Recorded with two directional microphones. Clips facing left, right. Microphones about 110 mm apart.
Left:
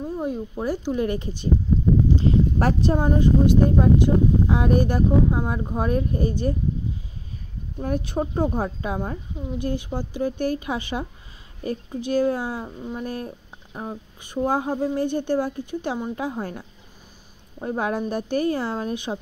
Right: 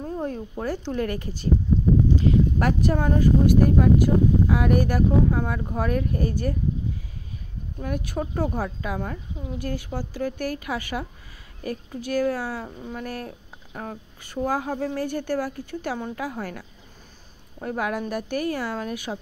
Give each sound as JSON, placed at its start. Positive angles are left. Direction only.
{"t": 0.0, "sound": "speech", "side_deg": 10}
{"t": 7.8, "sound": "speech", "side_deg": 30}